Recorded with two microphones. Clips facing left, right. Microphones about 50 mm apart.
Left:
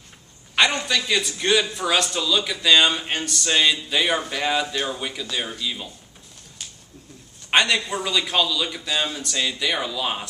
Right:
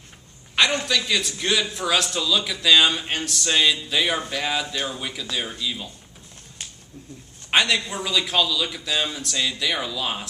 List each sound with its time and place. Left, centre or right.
0.6 s a sound: centre
1.4 s speech: centre
7.5 s speech: centre